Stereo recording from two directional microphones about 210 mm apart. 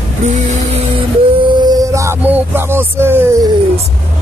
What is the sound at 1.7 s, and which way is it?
Music, 15° right (ahead or behind).